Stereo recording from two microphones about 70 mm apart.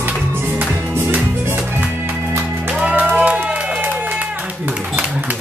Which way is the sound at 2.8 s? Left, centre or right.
Centre.